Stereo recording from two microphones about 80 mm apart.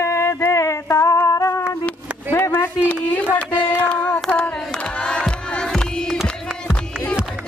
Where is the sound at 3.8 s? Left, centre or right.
Centre.